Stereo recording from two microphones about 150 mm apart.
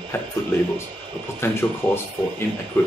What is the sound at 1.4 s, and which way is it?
Speech, 15° left (ahead or behind).